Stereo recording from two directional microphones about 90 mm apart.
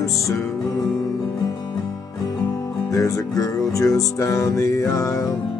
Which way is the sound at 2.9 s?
40° left (ahead or behind).